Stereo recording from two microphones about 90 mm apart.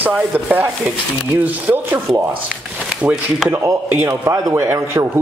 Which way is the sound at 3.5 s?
30° right (ahead or behind).